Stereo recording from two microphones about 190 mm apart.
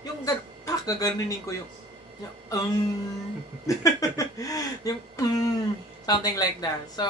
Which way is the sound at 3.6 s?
15° left (ahead or behind).